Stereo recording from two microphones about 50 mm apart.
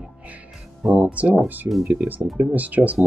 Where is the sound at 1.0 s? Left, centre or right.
Right.